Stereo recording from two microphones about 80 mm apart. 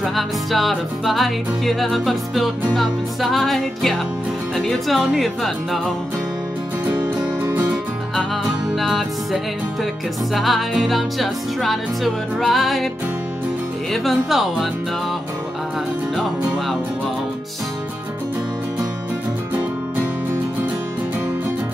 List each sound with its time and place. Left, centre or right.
0.0 s music: centre
7.4 s music: right
8.5 s music: centre
14.0 s music: centre
16.2 s music: centre